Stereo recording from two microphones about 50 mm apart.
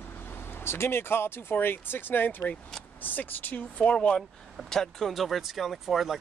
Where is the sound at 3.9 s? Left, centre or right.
Centre.